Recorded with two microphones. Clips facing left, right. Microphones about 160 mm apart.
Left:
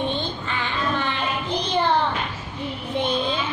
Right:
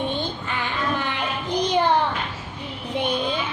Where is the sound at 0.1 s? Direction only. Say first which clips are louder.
Even; 15° right (ahead or behind).